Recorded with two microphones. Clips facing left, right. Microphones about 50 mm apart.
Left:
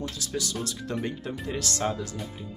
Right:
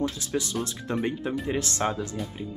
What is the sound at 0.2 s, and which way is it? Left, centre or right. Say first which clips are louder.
Speech: right 3 dB; right.